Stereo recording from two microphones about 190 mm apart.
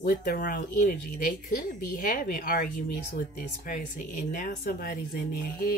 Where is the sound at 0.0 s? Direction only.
50° left (ahead or behind).